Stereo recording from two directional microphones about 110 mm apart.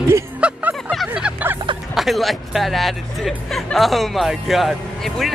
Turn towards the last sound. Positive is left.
turn(degrees=0)  # may be behind; listen again after turning